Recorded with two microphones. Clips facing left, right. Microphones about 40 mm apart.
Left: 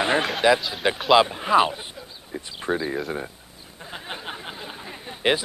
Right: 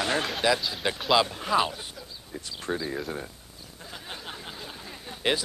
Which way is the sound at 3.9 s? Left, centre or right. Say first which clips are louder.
Left 6 dB; left.